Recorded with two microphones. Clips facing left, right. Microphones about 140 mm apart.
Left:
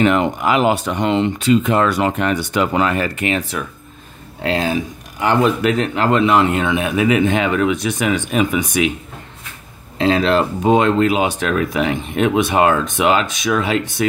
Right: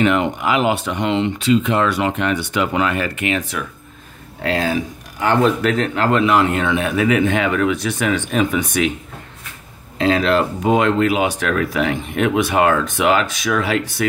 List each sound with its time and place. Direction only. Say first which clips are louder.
0.0 s speech: left 2 dB; 40° left (ahead or behind)
5.2 s a man's voice: even; 15° left (ahead or behind)
9.9 s speech: left 1 dB; 25° left (ahead or behind)